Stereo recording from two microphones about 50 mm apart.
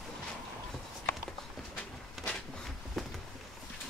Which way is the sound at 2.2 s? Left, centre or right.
Centre.